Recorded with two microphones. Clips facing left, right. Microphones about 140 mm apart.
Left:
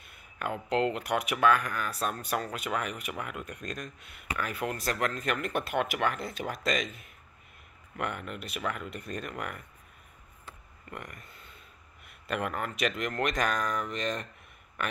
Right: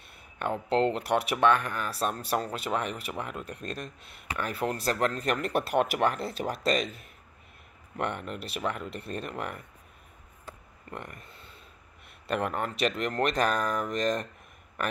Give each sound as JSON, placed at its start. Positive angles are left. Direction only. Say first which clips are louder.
{"t": 0.0, "sound": "speech", "louder": "right 3 dB", "side_deg": -35}
{"t": 10.4, "sound": "a sound", "louder": "right 4 dB", "side_deg": -30}
{"t": 12.3, "sound": "speech", "louder": "right 3 dB", "side_deg": -35}